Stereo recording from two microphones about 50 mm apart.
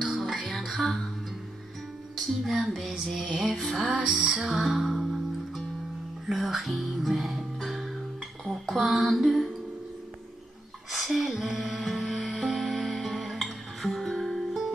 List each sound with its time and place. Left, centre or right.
0.0 s music: centre
2.2 s music: centre
4.0 s music: centre
4.6 s music: centre
6.2 s speech: centre
8.5 s music: centre
10.9 s music: centre